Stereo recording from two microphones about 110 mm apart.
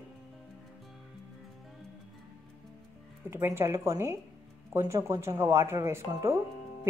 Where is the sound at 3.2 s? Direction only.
20° right (ahead or behind).